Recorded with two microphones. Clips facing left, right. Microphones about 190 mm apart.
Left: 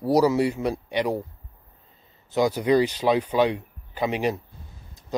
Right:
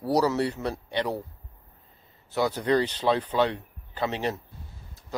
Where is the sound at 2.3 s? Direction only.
10° left (ahead or behind).